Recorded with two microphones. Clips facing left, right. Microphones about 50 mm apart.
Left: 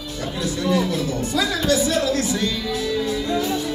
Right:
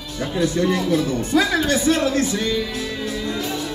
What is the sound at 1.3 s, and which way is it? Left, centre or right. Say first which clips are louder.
Speech: right 2 dB; right.